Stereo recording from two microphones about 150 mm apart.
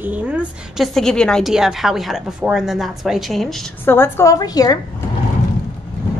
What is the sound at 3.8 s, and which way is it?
Speech, 15° left (ahead or behind).